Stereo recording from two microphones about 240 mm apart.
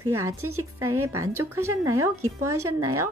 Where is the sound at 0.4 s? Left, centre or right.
Right.